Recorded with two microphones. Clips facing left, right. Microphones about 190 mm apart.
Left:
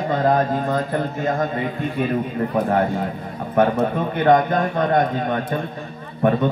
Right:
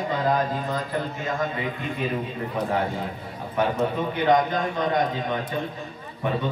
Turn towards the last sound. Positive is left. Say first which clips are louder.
# left 8 dB
turn(degrees=55)  # may be behind; listen again after turning